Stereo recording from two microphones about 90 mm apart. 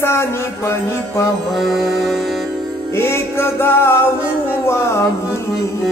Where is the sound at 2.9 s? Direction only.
30° left (ahead or behind).